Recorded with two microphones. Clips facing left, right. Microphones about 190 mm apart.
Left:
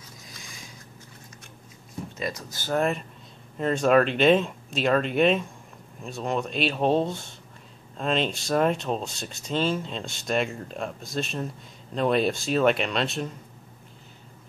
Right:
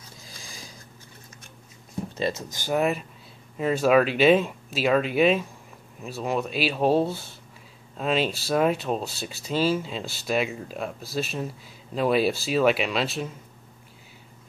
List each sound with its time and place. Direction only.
0.2 s a sound: 30° right (ahead or behind)
2.1 s speech: 30° right (ahead or behind)
2.5 s speech: 10° right (ahead or behind)